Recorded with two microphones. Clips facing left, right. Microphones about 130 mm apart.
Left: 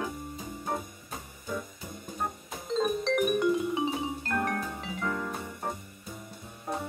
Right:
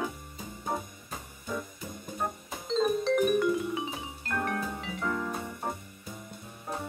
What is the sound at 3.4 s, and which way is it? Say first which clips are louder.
Music: left 1 dB; 30° left (ahead or behind).